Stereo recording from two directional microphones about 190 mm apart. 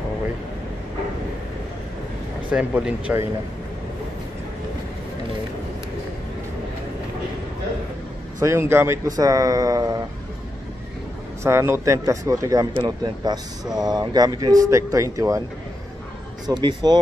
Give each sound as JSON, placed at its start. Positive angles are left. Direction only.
{"t": 2.5, "sound": "a man's voice", "side_deg": -5}
{"t": 8.4, "sound": "a man's voice", "side_deg": -15}
{"t": 11.4, "sound": "a man's voice", "side_deg": -15}
{"t": 16.4, "sound": "speech", "side_deg": -20}